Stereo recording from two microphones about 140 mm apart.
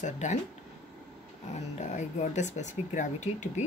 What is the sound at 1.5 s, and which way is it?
Speech, 60° left (ahead or behind).